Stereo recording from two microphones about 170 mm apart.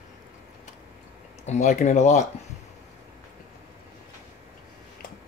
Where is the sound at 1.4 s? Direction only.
40° left (ahead or behind).